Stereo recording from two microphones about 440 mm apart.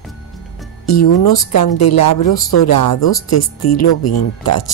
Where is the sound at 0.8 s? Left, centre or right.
Left.